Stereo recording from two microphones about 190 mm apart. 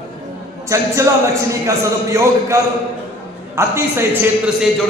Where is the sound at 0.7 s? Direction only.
15° right (ahead or behind).